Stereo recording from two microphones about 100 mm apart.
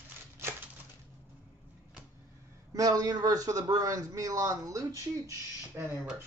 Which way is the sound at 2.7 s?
40° right (ahead or behind).